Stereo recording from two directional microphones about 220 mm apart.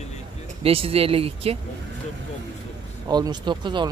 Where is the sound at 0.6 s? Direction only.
25° right (ahead or behind).